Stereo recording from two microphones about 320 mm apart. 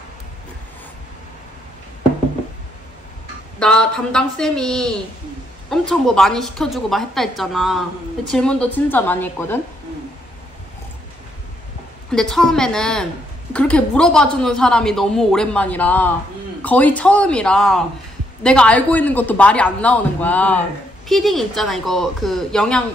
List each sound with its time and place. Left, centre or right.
3.5 s a man's voice: centre
12.1 s a man's voice: centre